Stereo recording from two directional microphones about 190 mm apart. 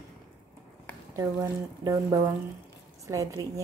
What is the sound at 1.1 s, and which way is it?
Speech, 15° right (ahead or behind).